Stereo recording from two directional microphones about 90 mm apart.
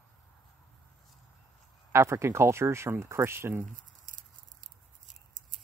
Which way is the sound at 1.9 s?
30° right (ahead or behind).